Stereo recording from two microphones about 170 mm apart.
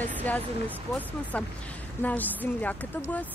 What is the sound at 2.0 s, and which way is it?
Speech, 10° left (ahead or behind).